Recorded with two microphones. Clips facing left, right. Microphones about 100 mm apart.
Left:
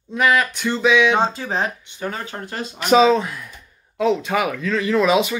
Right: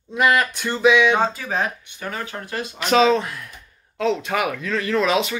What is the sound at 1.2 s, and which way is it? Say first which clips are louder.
Speech: left 1 dB; 25° left (ahead or behind).